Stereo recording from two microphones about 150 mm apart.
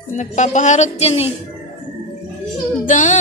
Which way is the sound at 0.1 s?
55° left (ahead or behind).